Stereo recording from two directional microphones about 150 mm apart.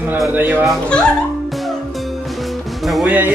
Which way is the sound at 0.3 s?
10° right (ahead or behind).